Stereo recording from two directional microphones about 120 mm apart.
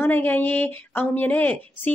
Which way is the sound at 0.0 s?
15° left (ahead or behind).